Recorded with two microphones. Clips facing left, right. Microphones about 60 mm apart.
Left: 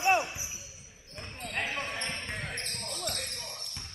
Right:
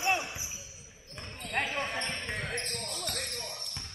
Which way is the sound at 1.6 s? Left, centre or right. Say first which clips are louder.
Right 1 dB; centre.